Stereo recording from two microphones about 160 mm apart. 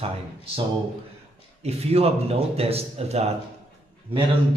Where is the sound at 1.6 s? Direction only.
40° right (ahead or behind).